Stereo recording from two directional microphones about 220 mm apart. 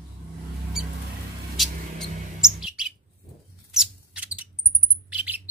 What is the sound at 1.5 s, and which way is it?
Bird, centre (ahead or behind).